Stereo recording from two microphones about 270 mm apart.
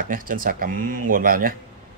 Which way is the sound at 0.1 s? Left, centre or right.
Right.